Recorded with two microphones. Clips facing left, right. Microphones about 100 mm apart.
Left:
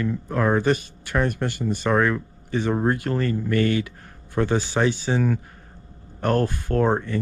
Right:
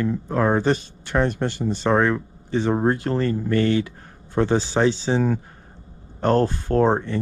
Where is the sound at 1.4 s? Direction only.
10° left (ahead or behind).